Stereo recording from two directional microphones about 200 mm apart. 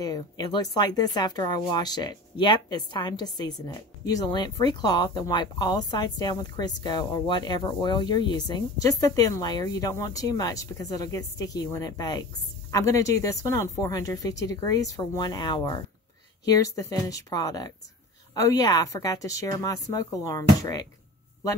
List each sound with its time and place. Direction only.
0.0 s speech: 20° left (ahead or behind)